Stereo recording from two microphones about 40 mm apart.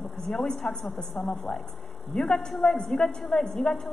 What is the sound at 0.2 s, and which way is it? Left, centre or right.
A woman's voice, centre.